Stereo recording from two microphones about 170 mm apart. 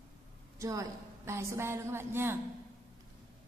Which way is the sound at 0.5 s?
20° right (ahead or behind).